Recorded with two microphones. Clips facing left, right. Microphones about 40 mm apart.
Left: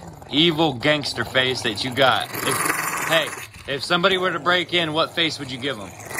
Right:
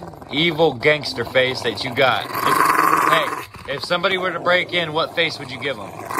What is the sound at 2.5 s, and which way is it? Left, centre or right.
Dog, right.